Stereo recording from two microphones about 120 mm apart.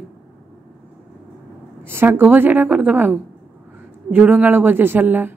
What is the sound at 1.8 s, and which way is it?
A woman's voice, 20° right (ahead or behind).